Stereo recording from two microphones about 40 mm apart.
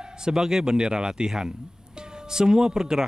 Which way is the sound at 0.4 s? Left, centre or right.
Centre.